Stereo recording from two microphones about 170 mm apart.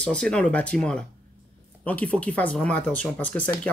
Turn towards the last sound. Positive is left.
turn(degrees=10)  # may be behind; listen again after turning